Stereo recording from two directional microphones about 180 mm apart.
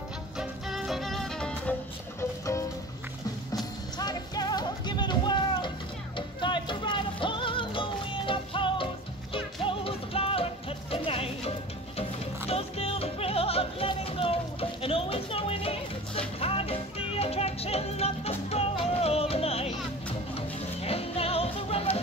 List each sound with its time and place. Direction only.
0.4 s music: centre (ahead or behind); by 2.6 s 15° left (ahead or behind)
4.0 s music: 20° left (ahead or behind)